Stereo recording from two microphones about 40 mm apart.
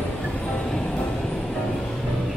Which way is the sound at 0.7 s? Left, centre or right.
Centre.